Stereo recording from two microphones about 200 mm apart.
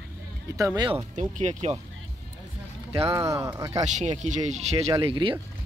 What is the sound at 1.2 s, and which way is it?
Speech, 35° right (ahead or behind).